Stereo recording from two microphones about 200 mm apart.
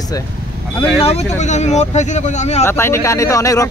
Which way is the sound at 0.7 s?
30° left (ahead or behind).